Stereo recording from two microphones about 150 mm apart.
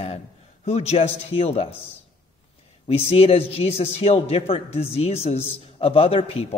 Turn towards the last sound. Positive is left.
turn(degrees=40)  # may be behind; listen again after turning